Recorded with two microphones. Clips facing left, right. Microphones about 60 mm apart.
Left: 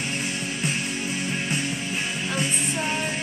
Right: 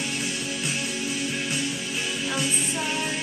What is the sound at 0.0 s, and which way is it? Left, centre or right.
Music, left.